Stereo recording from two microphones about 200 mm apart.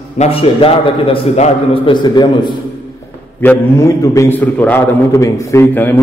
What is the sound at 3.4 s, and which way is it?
A man's voice, 10° left (ahead or behind).